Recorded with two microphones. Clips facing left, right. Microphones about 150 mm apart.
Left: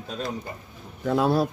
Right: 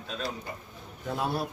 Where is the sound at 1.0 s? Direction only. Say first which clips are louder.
Left 9 dB; 90° left.